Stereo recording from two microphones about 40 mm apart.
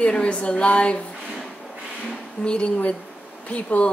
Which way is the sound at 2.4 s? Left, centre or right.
Left.